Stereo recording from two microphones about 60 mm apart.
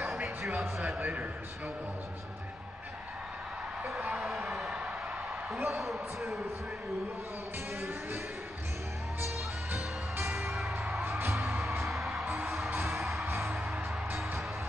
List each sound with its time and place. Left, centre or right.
0.6 s speech: centre
0.9 s a man's voice: right
4.0 s a man's voice: centre
4.3 s a man's voice: centre
10.3 s music: right
11.1 s music: right
11.8 s music: centre
12.3 s music: right